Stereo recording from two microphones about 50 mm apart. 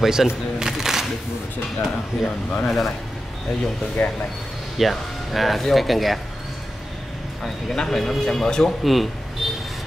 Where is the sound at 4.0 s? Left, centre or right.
Left.